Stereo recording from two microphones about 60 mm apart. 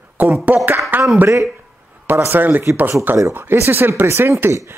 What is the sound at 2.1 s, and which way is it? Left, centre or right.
Speech, right.